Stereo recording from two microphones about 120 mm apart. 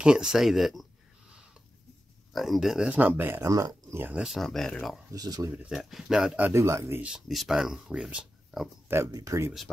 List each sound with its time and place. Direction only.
0.0 s speech: 5° right (ahead or behind)
2.3 s speech: centre (ahead or behind); by 3.4 s 15° right (ahead or behind)
3.4 s speech: 30° right (ahead or behind)
4.0 s speech: 10° right (ahead or behind)
5.1 s speech: 30° right (ahead or behind)
5.5 s speech: 10° right (ahead or behind)
6.6 s speech: 25° right (ahead or behind)
7.0 s speech: 5° right (ahead or behind)
8.9 s speech: 25° right (ahead or behind)